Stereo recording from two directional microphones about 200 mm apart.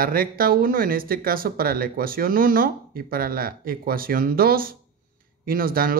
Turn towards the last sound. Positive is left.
turn(degrees=-45)  # may be behind; listen again after turning